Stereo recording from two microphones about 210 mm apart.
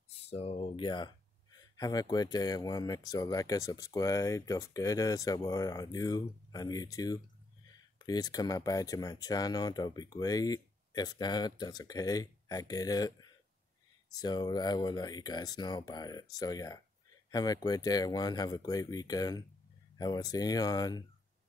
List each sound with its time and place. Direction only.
0.1 s speech: 30° left (ahead or behind)